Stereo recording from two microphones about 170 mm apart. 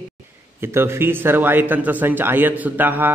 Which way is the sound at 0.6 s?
15° right (ahead or behind).